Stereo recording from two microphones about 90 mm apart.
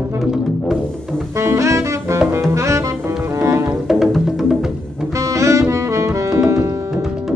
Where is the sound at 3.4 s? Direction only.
30° right (ahead or behind).